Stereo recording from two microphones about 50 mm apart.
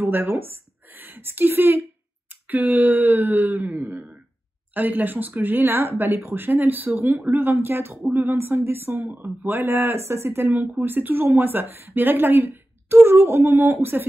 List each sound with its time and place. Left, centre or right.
0.0 s a woman's voice: right
2.4 s a sound: right
8.1 s a woman's voice: right
9.9 s speech: right
10.8 s a woman's voice: right